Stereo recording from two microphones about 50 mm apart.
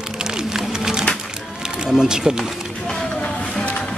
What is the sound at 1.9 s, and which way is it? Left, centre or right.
Speech, centre.